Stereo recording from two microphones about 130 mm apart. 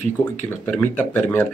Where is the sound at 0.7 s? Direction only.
15° left (ahead or behind).